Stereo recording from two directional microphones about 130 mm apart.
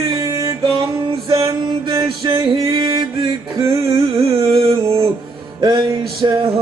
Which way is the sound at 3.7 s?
45° right (ahead or behind).